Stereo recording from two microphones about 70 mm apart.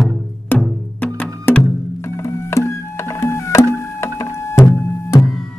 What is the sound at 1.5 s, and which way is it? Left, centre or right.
Music, left.